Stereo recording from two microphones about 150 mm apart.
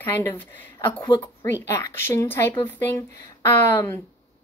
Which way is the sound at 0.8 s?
30° left (ahead or behind).